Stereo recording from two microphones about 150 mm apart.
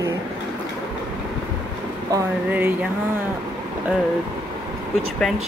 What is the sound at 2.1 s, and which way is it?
Speech, 20° right (ahead or behind).